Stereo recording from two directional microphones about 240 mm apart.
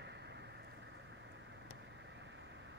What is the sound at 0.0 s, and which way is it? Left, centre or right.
Vehicle, right.